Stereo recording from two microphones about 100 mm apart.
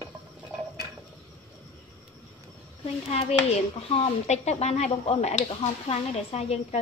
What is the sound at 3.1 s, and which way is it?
Speech, 90° left.